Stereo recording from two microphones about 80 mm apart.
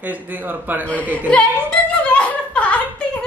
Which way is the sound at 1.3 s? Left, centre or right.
Centre.